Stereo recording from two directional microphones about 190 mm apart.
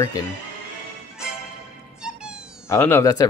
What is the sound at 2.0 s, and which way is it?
Music, 5° right (ahead or behind).